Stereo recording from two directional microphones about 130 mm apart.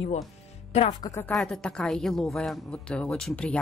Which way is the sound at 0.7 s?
55° left (ahead or behind).